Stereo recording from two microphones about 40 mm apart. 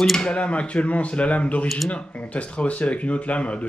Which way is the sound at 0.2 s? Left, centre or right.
Left.